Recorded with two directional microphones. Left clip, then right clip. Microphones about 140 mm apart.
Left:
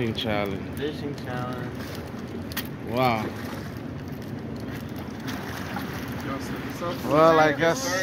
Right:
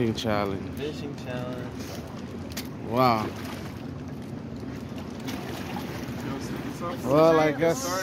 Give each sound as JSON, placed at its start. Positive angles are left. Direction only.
{"t": 0.0, "sound": "speech", "side_deg": -45}
{"t": 2.9, "sound": "speech", "side_deg": -45}
{"t": 7.1, "sound": "speech", "side_deg": -30}